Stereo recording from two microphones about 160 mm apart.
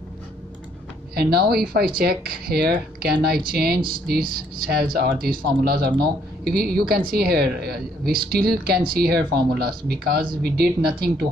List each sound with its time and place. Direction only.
1.1 s speech: 80° right